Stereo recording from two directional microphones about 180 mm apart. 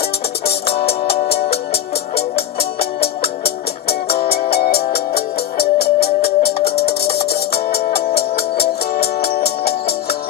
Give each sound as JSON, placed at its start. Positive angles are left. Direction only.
{"t": 0.5, "sound": "music", "side_deg": 35}
{"t": 1.2, "sound": "music", "side_deg": 60}
{"t": 4.6, "sound": "music", "side_deg": 60}